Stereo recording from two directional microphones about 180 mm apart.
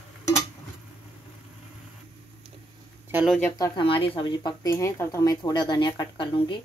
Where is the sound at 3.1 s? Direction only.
5° right (ahead or behind).